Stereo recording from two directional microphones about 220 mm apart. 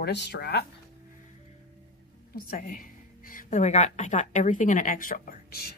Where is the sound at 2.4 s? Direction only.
40° left (ahead or behind).